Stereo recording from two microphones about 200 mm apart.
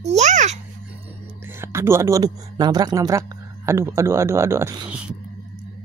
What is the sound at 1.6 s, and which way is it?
Speech, 15° right (ahead or behind).